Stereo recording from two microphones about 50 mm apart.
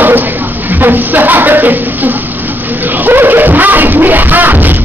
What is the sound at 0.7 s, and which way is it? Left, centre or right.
Speech, right.